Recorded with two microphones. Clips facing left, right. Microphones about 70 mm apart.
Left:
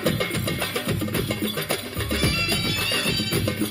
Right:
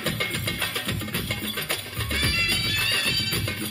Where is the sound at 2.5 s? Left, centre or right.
Right.